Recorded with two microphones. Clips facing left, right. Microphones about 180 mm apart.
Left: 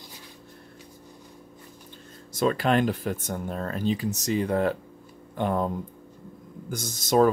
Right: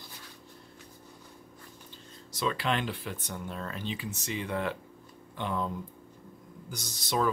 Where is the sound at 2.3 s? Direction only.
45° left (ahead or behind).